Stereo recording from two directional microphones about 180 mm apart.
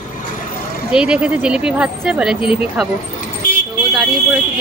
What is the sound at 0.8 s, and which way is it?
Speech, 5° right (ahead or behind).